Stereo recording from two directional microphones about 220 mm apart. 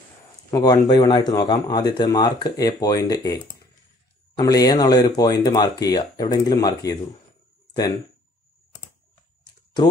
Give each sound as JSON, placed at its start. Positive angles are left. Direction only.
{"t": 0.5, "sound": "speech", "side_deg": 15}
{"t": 4.4, "sound": "speech", "side_deg": 15}